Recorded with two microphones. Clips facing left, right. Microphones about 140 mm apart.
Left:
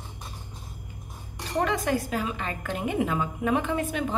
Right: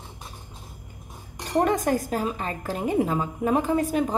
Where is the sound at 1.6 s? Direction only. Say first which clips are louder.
Right 3 dB; 45° right (ahead or behind).